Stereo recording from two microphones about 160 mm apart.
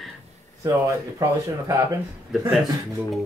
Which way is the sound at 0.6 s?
20° right (ahead or behind).